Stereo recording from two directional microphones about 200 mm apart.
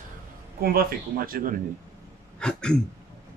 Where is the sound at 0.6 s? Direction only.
45° right (ahead or behind).